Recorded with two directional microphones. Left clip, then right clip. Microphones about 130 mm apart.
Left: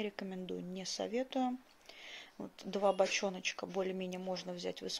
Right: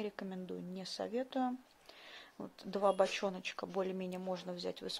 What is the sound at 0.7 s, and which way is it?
Speech, 45° right (ahead or behind).